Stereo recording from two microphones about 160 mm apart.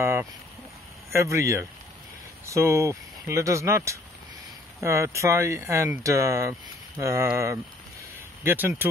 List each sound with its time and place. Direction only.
0.0 s speech: 15° right (ahead or behind)